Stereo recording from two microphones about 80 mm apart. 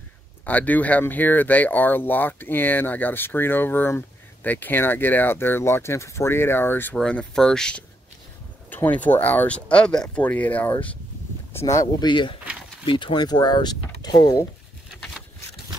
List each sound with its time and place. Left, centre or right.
0.5 s speech: centre
7.0 s speech: centre
8.6 s speech: left
11.6 s speech: left
12.1 s speech: left